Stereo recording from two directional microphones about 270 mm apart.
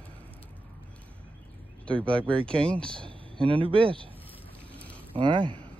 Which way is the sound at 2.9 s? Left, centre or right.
Centre.